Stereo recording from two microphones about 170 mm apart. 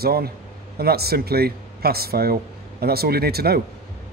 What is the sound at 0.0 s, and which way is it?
A man's voice, 65° right (ahead or behind).